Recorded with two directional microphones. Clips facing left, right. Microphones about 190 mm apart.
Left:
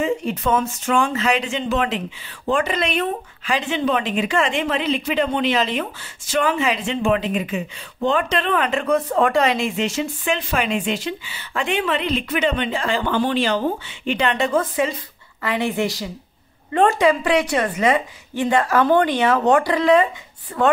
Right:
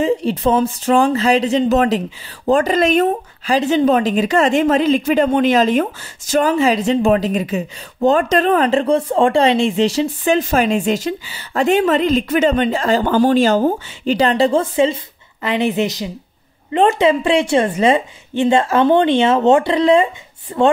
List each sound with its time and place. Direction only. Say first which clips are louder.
0.0 s a woman's voice: right 5 dB; 30° right (ahead or behind)